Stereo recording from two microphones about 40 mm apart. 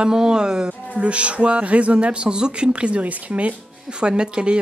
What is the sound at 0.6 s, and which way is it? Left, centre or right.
Speech, right.